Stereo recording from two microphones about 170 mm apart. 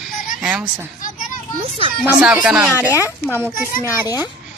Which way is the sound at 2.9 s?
15° left (ahead or behind).